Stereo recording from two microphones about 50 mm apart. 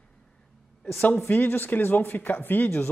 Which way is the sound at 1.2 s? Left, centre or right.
Left.